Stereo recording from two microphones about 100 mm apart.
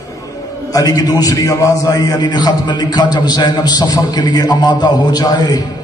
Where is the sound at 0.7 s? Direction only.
40° left (ahead or behind).